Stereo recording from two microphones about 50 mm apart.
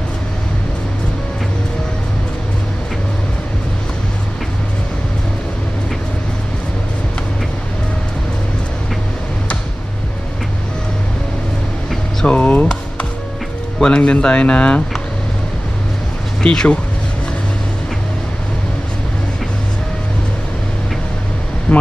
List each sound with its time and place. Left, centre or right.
12.3 s music: left
13.7 s speech: centre
16.4 s speech: centre
21.7 s speech: centre